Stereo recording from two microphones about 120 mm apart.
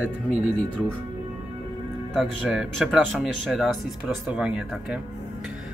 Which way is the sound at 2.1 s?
5° right (ahead or behind).